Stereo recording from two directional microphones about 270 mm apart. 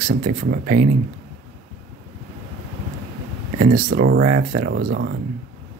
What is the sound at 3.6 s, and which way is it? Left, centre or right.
Speech, right.